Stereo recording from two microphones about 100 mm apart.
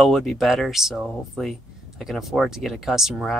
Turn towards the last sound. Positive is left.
turn(degrees=0)  # may be behind; listen again after turning